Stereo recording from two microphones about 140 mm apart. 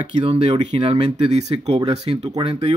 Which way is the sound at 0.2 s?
40° right (ahead or behind).